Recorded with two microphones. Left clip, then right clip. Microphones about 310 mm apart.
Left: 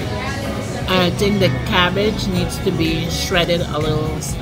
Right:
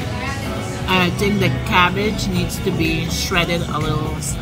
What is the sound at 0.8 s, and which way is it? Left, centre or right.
Speech, centre.